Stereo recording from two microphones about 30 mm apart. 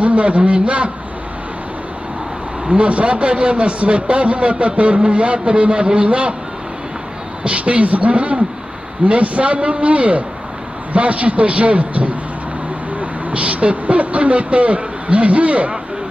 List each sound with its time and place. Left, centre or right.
0.0 s a sound: right
0.4 s a man's voice: right
2.7 s a man's voice: right
7.4 s a man's voice: right